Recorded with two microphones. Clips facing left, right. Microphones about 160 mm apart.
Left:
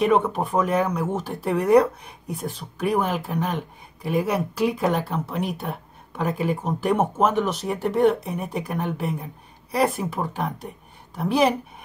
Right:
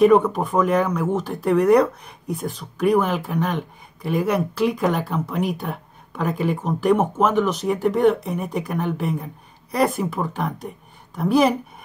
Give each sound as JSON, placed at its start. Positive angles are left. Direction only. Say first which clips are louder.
{"t": 0.0, "sound": "a woman's voice", "louder": "right 5 dB", "side_deg": 0}